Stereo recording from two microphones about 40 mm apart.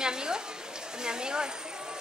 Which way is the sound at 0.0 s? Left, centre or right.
Centre.